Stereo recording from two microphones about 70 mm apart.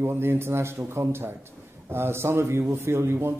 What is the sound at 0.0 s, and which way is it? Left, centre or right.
Speech, right.